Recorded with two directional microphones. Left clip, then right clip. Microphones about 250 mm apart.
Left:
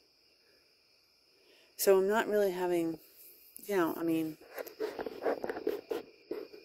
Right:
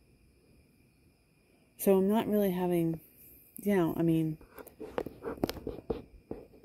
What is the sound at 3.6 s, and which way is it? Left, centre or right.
Speech, left.